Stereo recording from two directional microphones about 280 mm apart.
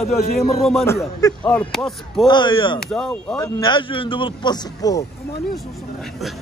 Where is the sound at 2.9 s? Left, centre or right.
Centre.